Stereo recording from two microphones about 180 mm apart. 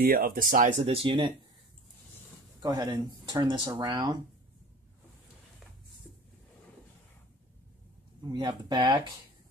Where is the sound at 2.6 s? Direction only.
25° right (ahead or behind).